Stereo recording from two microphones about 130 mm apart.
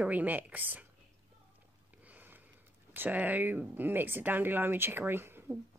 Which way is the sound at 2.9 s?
15° right (ahead or behind).